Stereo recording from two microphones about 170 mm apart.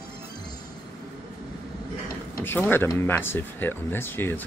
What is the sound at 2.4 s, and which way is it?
Speech, 10° left (ahead or behind).